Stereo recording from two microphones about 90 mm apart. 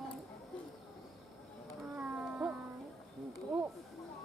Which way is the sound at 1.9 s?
15° right (ahead or behind).